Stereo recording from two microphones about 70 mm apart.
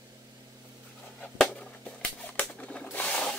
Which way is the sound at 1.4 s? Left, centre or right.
Centre.